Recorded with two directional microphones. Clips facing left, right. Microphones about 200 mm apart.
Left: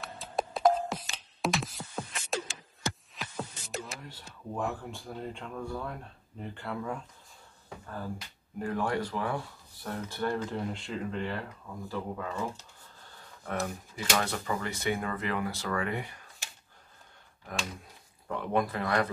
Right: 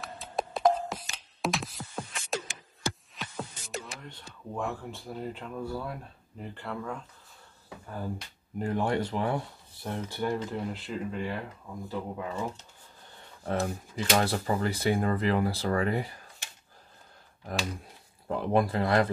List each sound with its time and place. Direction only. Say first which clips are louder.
0.0 s music: even; centre (ahead or behind)
6.4 s speech: even; centre (ahead or behind)
7.8 s speech: right 2 dB; 15° right (ahead or behind)
10.4 s speech: even; 5° right (ahead or behind)
13.4 s speech: right 4 dB; 30° right (ahead or behind)
18.3 s speech: right 4 dB; 30° right (ahead or behind)